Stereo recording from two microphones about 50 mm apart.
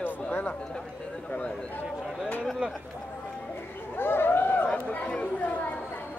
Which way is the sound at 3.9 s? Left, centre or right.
Left.